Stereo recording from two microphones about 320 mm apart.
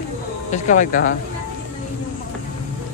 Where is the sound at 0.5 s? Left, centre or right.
Left.